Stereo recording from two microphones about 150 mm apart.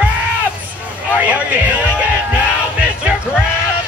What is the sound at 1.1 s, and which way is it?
Music, 10° right (ahead or behind).